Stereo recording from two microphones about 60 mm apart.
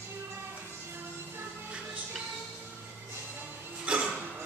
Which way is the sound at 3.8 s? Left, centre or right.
Centre.